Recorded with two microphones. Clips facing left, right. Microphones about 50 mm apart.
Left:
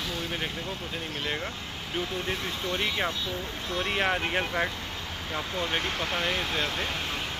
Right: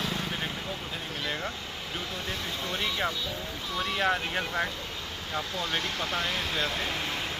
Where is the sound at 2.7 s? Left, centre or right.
Left.